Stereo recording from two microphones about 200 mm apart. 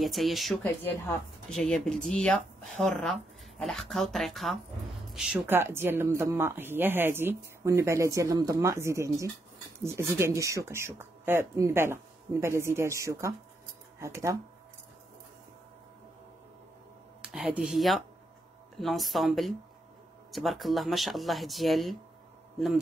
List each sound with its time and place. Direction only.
0.0 s a woman's voice: centre (ahead or behind)
17.2 s speech: 5° right (ahead or behind)